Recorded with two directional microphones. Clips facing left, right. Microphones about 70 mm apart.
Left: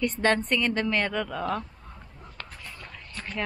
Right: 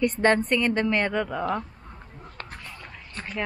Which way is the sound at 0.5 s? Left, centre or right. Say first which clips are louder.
Right 3 dB; right.